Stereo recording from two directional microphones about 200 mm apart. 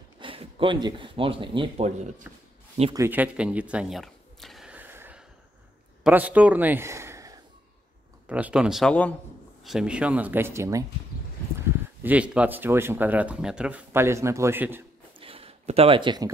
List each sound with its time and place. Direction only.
0.2 s speech: 25° right (ahead or behind)
2.3 s speech: 10° right (ahead or behind)
2.9 s a sound: 10° right (ahead or behind)
6.0 s speech: 5° right (ahead or behind)
12.0 s speech: 5° right (ahead or behind)
15.1 s a sound: 25° right (ahead or behind)